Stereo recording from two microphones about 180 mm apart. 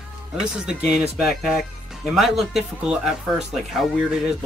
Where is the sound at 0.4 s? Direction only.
5° right (ahead or behind).